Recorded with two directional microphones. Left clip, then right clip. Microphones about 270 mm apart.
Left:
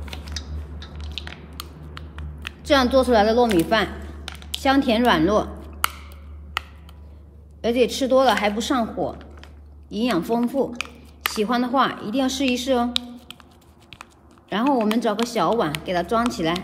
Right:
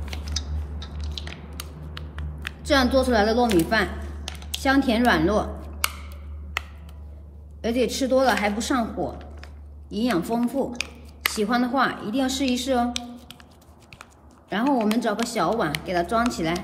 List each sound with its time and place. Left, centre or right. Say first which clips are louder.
2.0 s music: right 1 dB; centre
2.6 s speech: left 3 dB; left
4.2 s a sound: left 1 dB; centre
4.6 s speech: left 2 dB; left
7.6 s speech: left 4 dB; left
14.5 s speech: left 2 dB; left